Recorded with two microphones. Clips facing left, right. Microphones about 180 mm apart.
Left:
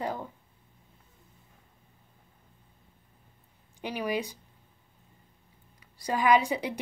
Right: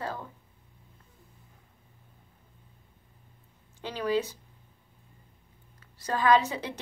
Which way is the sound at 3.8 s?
15° left (ahead or behind).